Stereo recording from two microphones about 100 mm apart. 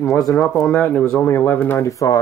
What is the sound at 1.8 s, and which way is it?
Speech, 35° left (ahead or behind).